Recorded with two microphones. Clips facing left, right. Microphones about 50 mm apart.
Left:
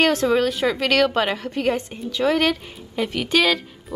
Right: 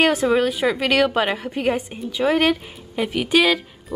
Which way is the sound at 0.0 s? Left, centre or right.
Centre.